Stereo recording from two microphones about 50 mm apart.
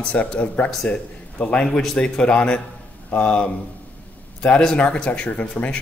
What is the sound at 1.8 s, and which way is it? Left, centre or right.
Speech, centre.